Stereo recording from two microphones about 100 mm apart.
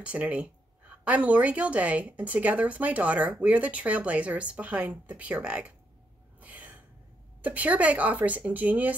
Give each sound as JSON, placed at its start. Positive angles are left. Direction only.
{"t": 0.0, "sound": "speech", "side_deg": -15}
{"t": 6.4, "sound": "gasp", "side_deg": -15}
{"t": 7.4, "sound": "speech", "side_deg": -15}